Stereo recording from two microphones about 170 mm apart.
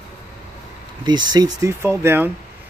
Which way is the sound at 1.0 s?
25° right (ahead or behind).